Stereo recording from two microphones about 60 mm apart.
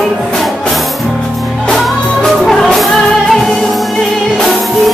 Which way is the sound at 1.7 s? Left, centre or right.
Centre.